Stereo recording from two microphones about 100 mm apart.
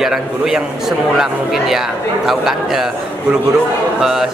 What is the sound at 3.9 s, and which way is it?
Speech, 5° right (ahead or behind).